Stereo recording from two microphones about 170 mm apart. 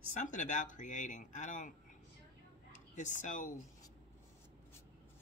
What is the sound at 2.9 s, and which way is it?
Speech, 45° left (ahead or behind).